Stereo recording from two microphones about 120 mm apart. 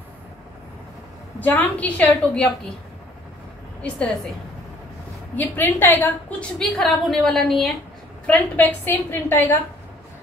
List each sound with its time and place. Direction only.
1.4 s a woman's voice: 15° left (ahead or behind)
3.8 s a woman's voice: centre (ahead or behind)
5.3 s a woman's voice: 15° left (ahead or behind)
6.6 s a woman's voice: centre (ahead or behind)
8.3 s a woman's voice: 15° left (ahead or behind)